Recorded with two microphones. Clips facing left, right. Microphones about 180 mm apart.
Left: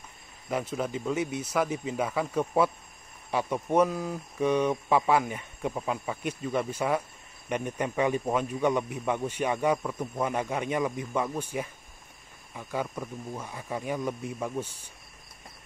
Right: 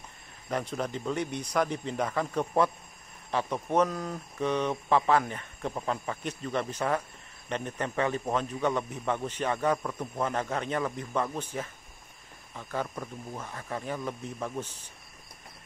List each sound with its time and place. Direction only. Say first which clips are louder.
0.5 s speech: left 1 dB; 5° left (ahead or behind)